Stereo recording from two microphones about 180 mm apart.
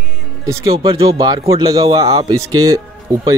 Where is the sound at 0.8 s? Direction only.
25° right (ahead or behind).